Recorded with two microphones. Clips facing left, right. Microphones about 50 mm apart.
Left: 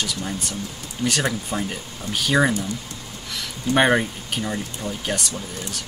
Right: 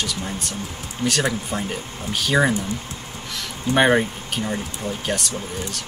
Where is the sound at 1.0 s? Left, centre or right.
Right.